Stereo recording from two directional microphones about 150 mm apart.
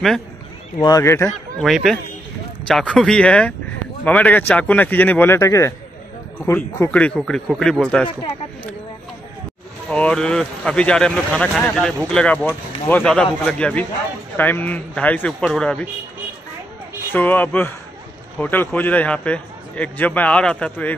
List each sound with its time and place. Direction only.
0.8 s a man's voice: 20° left (ahead or behind)
1.6 s a man's voice: centre (ahead or behind)
9.8 s a man's voice: 5° left (ahead or behind)
17.1 s a man's voice: 15° left (ahead or behind)